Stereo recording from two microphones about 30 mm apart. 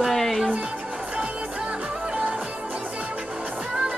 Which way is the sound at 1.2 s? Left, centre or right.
Right.